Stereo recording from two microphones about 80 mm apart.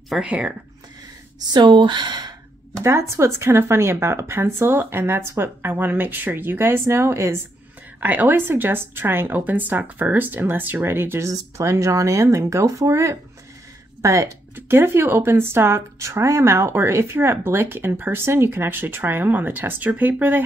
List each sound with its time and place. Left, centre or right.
0.2 s speech: centre
1.5 s speech: right
2.8 s speech: right
14.5 s speech: right